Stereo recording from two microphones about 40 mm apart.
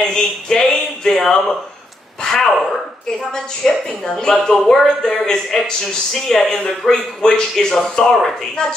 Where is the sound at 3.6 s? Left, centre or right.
Centre.